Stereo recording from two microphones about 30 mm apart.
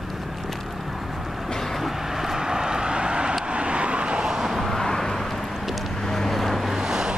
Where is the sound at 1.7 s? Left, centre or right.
Centre.